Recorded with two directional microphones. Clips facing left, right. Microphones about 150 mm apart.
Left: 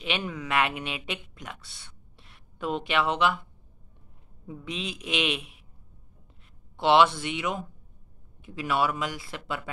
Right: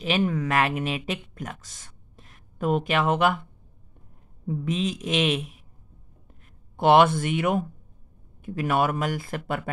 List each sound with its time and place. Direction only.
0.0 s speech: 40° right (ahead or behind)
4.5 s a woman's voice: 40° right (ahead or behind)
6.8 s speech: 50° right (ahead or behind)